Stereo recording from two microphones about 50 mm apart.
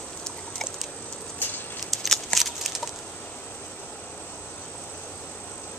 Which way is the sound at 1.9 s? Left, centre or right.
Centre.